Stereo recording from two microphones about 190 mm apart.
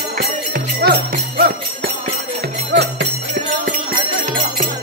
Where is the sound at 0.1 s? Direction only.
55° right (ahead or behind).